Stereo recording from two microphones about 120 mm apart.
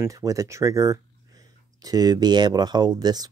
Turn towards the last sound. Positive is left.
turn(degrees=-35)  # may be behind; listen again after turning